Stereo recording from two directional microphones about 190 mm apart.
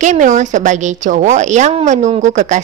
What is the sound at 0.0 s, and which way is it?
A woman's voice, 40° right (ahead or behind).